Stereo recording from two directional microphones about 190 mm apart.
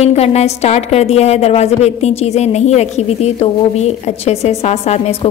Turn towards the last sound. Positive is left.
turn(degrees=35)  # may be behind; listen again after turning